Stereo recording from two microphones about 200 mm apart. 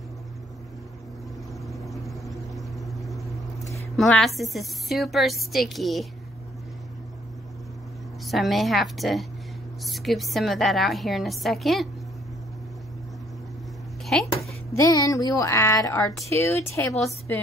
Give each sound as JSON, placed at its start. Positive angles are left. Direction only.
{"t": 1.7, "sound": "vehicle", "side_deg": 0}
{"t": 3.9, "sound": "a woman's voice", "side_deg": 0}
{"t": 8.3, "sound": "a woman's voice", "side_deg": 0}
{"t": 14.0, "sound": "a sound", "side_deg": 0}
{"t": 14.8, "sound": "speech", "side_deg": 15}